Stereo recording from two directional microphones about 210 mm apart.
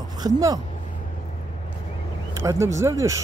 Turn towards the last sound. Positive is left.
turn(degrees=-15)  # may be behind; listen again after turning